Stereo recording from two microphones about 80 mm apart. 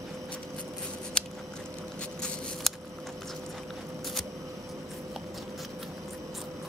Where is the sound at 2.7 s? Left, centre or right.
Centre.